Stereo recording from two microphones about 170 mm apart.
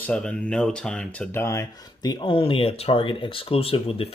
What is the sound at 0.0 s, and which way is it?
Speech, 5° left (ahead or behind).